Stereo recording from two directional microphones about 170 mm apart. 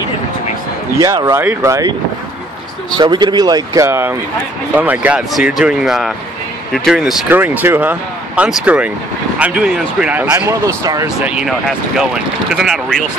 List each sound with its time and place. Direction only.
0.9 s speech: 20° right (ahead or behind)
3.0 s speech: 25° right (ahead or behind)
11.2 s speech: 5° right (ahead or behind)